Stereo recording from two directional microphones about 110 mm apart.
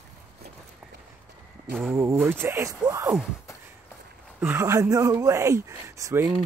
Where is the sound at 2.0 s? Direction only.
15° right (ahead or behind).